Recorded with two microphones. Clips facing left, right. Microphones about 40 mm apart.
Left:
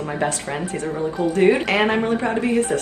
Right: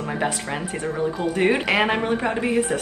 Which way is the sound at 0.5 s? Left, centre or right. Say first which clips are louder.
Left 2 dB; right.